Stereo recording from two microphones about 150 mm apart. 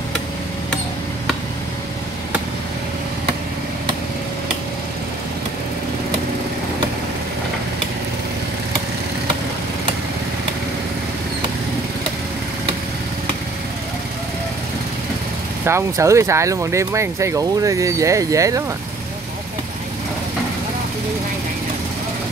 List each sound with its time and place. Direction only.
15.6 s speech: 20° right (ahead or behind)